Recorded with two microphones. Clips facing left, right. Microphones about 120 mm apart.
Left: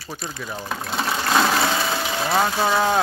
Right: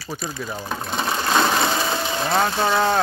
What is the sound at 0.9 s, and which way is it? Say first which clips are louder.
Sewing machine: even; centre (ahead or behind).